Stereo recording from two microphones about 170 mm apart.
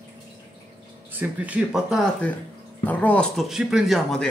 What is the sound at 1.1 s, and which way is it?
Speech, 10° right (ahead or behind).